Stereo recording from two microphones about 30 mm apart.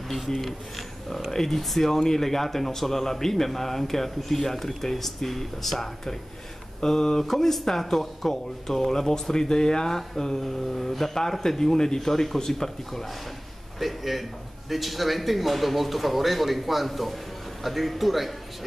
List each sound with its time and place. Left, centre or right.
0.3 s speech: centre
13.7 s speech: centre